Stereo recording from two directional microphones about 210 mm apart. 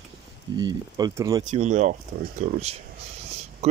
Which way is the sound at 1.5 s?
35° right (ahead or behind).